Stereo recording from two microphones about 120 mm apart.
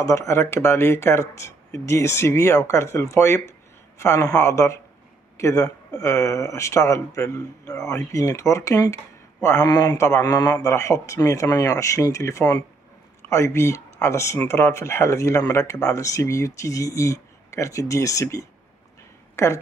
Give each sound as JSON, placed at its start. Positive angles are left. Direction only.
{"t": 0.0, "sound": "speech", "side_deg": 25}